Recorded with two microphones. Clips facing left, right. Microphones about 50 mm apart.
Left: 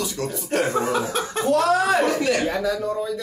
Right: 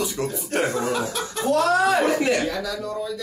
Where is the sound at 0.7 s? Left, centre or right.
Left.